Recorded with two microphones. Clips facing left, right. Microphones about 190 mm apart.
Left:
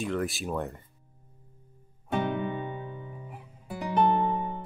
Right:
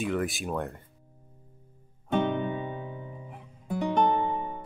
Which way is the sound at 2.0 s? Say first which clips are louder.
Right 3 dB; 5° left (ahead or behind).